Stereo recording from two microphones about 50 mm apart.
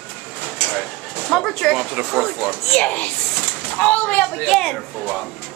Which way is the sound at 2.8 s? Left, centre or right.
Left.